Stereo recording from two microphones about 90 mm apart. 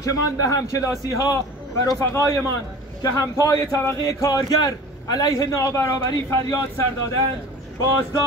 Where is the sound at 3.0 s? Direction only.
45° left (ahead or behind).